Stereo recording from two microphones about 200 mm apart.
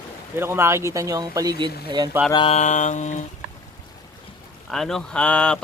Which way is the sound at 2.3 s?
30° left (ahead or behind).